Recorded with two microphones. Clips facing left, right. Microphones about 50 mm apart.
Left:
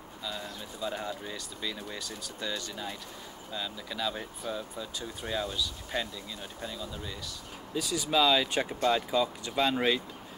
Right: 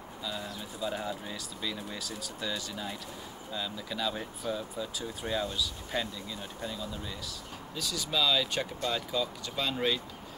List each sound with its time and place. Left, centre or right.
0.2 s speech: centre
7.7 s speech: centre